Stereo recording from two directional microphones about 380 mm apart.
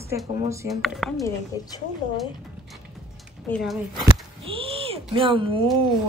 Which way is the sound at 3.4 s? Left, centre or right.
Centre.